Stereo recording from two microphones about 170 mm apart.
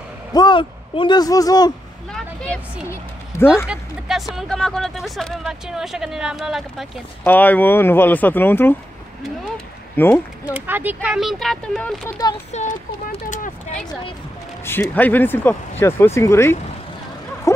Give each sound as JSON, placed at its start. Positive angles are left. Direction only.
{"t": 0.3, "sound": "speech", "side_deg": 25}
{"t": 2.9, "sound": "a woman's voice", "side_deg": 15}
{"t": 3.6, "sound": "speech", "side_deg": -5}
{"t": 7.2, "sound": "speech", "side_deg": 10}
{"t": 9.9, "sound": "speech", "side_deg": 10}
{"t": 10.5, "sound": "speech", "side_deg": -10}
{"t": 12.5, "sound": "speech", "side_deg": 45}
{"t": 14.6, "sound": "speech", "side_deg": 15}
{"t": 17.5, "sound": "a sound", "side_deg": 15}